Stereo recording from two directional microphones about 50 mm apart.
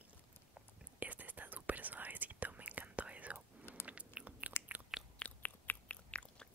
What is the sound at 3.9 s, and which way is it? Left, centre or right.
Biting, right.